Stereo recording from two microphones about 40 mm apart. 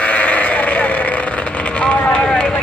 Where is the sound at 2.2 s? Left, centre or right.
Left.